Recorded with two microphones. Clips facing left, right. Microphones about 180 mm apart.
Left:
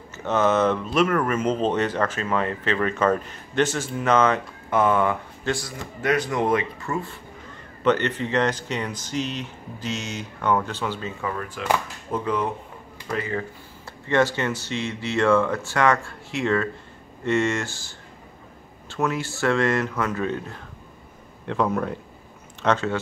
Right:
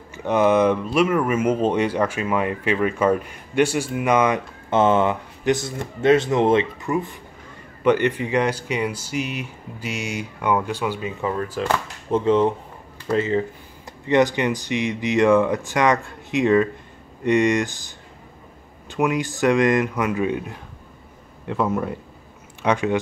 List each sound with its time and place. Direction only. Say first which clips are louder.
0.1 s speech: right 3 dB; 15° right (ahead or behind)
4.6 s a man's voice: right 3 dB; 25° right (ahead or behind)